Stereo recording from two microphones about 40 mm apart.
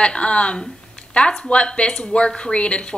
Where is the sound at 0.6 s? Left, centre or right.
Left.